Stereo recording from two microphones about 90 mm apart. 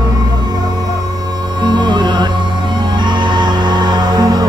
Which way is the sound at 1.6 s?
55° right (ahead or behind).